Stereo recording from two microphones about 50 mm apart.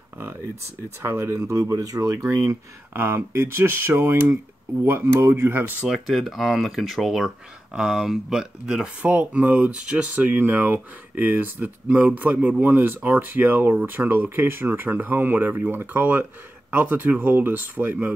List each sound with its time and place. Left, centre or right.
1.0 s speech: right
2.9 s speech: right
5.9 s speech: centre
9.0 s speech: right
9.8 s speech: right
10.3 s speech: right